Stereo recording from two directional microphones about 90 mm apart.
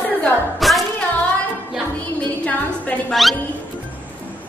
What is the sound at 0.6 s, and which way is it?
Music, centre (ahead or behind).